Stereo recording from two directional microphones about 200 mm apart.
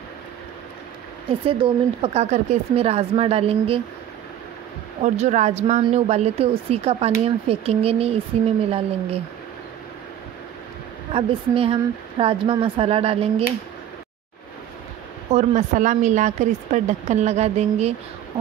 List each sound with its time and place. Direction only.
1.4 s speech: 25° right (ahead or behind)
5.0 s a woman's voice: 35° right (ahead or behind)
11.1 s speech: 30° right (ahead or behind)
15.3 s a woman's voice: 35° right (ahead or behind)